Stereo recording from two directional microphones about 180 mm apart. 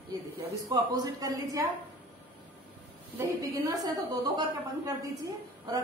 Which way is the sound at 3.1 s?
20° right (ahead or behind).